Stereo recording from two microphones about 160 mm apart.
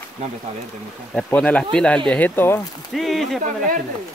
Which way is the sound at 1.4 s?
5° left (ahead or behind).